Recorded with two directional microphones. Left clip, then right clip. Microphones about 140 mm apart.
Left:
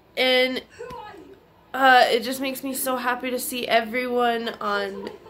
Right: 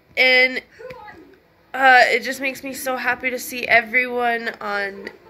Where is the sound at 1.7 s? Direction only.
30° left (ahead or behind).